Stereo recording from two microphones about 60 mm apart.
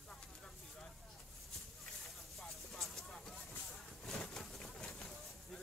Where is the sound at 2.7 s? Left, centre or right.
Centre.